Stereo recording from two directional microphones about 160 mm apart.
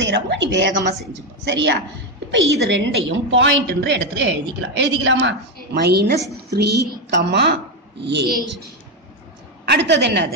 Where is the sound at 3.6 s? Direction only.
90° right.